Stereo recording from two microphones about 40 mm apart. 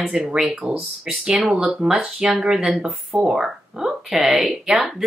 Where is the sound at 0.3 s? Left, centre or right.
Centre.